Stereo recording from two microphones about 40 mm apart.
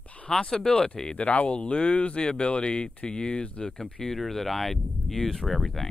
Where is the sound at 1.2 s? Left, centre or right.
Left.